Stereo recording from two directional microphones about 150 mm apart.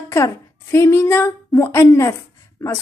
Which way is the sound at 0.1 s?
20° left (ahead or behind).